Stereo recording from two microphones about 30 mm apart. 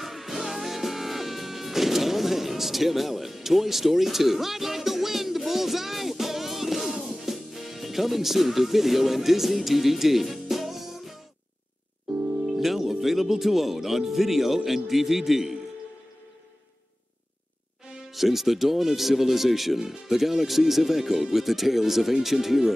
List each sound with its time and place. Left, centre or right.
0.0 s music: centre
12.5 s speech: centre
18.1 s speech: centre